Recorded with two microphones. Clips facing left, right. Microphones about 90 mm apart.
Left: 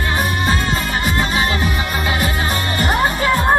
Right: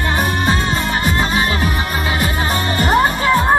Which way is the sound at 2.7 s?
30° right (ahead or behind).